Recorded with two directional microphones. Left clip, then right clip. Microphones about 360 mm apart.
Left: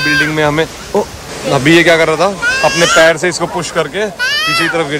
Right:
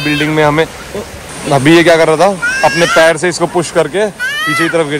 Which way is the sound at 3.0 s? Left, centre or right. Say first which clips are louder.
Even; centre.